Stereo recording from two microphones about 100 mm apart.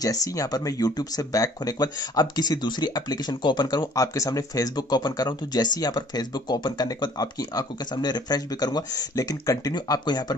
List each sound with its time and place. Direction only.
0.0 s speech: 35° left (ahead or behind)